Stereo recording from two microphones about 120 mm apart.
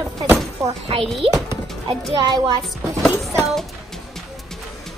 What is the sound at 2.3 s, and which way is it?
Speech, 35° right (ahead or behind).